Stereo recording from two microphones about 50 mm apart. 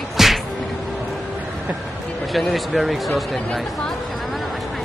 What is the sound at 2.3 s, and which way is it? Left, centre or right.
Speech, centre.